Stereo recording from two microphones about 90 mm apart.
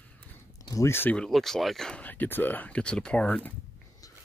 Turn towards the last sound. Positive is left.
turn(degrees=10)  # may be behind; listen again after turning